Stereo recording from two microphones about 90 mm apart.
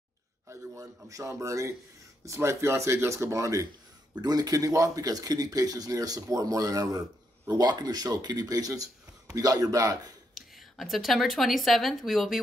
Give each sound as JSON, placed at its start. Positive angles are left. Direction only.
{"t": 0.5, "sound": "speech", "side_deg": -40}
{"t": 4.2, "sound": "speech", "side_deg": -45}
{"t": 10.3, "sound": "a woman's voice", "side_deg": 0}